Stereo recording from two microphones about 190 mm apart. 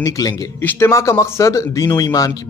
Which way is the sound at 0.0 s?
15° left (ahead or behind).